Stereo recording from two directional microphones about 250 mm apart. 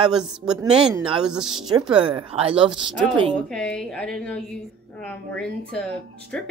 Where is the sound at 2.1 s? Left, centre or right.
Right.